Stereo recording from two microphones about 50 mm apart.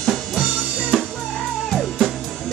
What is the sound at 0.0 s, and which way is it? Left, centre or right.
Drum kit, centre.